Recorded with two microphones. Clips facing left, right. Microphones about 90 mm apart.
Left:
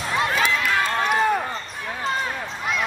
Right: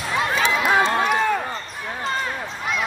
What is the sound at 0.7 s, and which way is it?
Run, 30° right (ahead or behind).